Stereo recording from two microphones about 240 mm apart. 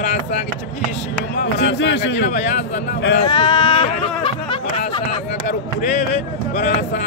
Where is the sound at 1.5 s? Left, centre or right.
Left.